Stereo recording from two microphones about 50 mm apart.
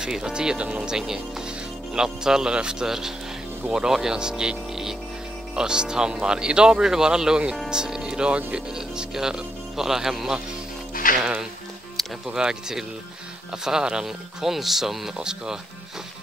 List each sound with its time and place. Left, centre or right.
0.0 s speech: centre
12.3 s speech: centre